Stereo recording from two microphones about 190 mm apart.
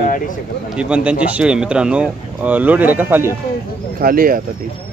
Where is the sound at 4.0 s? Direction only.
50° right (ahead or behind).